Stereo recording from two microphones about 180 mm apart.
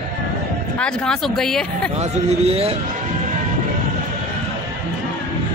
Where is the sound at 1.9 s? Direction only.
35° right (ahead or behind).